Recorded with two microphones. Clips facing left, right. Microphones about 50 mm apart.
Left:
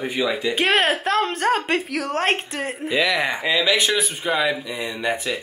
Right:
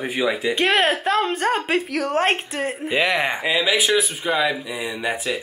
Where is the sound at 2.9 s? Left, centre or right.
Right.